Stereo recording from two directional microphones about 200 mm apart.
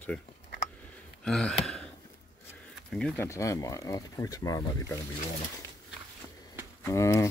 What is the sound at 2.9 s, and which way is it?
Speech, 5° left (ahead or behind).